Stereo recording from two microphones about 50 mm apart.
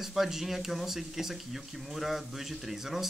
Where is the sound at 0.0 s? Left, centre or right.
Centre.